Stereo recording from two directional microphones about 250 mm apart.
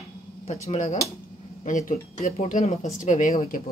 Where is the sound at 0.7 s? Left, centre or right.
Left.